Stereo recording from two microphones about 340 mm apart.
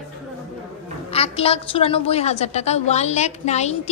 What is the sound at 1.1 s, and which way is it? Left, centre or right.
A woman's voice, centre.